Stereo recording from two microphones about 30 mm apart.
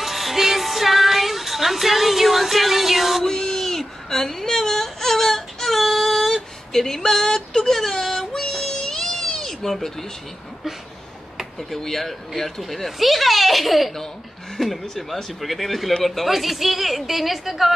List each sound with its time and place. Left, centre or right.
0.0 s music: centre
3.3 s whimper: centre
8.4 s a sound: centre
11.5 s speech: centre